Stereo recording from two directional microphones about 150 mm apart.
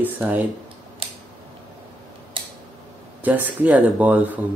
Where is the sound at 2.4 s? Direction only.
35° right (ahead or behind).